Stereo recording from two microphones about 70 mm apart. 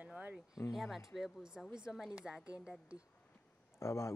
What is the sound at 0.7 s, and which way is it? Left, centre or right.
Speech, centre.